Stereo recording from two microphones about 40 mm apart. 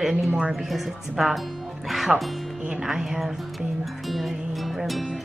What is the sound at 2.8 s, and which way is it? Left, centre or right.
Speech, centre.